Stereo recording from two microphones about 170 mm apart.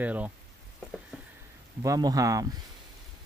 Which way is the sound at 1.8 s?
20° right (ahead or behind).